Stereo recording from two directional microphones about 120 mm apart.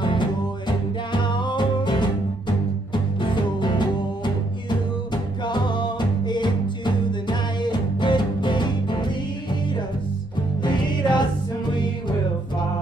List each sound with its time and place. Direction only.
0.0 s music: 40° left (ahead or behind)
10.6 s music: 40° left (ahead or behind)